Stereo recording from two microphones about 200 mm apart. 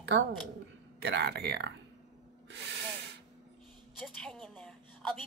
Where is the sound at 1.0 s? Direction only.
55° right (ahead or behind).